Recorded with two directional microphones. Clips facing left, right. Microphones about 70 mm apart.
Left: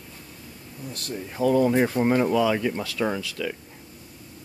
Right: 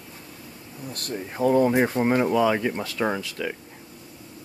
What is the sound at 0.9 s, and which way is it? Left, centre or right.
Speech, right.